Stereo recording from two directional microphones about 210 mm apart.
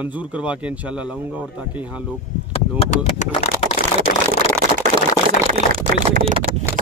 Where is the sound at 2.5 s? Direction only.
30° left (ahead or behind).